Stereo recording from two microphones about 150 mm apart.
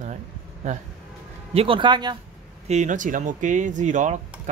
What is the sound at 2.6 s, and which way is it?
Speech, 50° right (ahead or behind).